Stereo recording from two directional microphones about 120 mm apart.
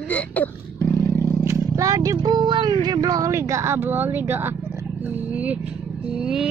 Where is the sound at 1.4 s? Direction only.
25° right (ahead or behind).